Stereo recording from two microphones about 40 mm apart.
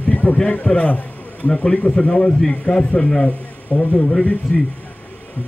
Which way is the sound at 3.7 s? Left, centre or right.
Left.